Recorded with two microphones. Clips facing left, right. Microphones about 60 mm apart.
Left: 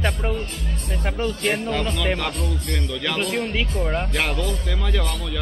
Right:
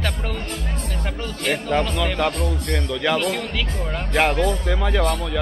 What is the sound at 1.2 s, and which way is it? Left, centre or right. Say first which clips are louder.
Speech: left 2 dB; left.